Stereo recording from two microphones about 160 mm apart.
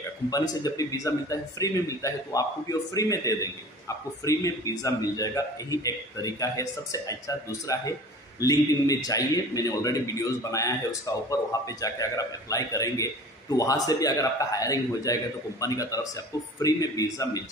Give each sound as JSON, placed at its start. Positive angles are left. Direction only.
{"t": 0.3, "sound": "a man's voice", "side_deg": 20}